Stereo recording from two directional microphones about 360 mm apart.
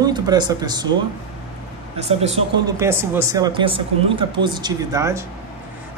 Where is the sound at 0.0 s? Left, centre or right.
Centre.